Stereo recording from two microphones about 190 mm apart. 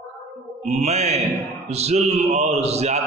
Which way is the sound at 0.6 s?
35° right (ahead or behind).